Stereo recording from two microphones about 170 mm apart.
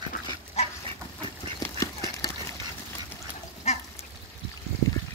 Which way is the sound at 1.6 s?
20° left (ahead or behind).